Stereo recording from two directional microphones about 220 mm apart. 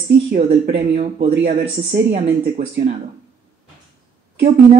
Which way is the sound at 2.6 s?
30° right (ahead or behind).